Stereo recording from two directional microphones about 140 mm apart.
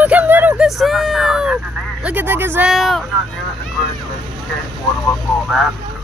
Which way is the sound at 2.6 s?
Centre (ahead or behind).